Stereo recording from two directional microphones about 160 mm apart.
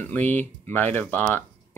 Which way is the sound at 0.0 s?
10° left (ahead or behind).